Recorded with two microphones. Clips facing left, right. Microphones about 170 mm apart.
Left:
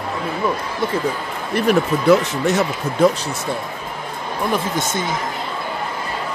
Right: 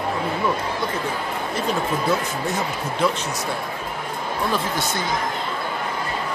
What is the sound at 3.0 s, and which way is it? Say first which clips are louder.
Speech: left 7 dB; 45° left (ahead or behind).